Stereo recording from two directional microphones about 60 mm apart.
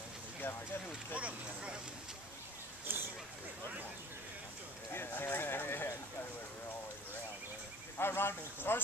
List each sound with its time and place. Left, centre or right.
1.1 s speech: centre
2.9 s speech: right
4.9 s speech: left
8.0 s speech: left